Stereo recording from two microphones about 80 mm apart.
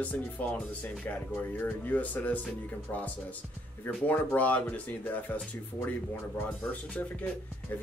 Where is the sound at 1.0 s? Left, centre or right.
Left.